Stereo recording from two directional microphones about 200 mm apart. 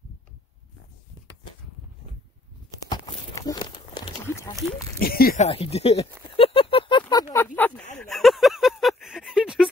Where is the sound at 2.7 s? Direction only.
20° left (ahead or behind).